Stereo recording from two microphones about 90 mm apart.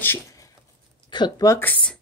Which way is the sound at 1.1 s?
55° left (ahead or behind).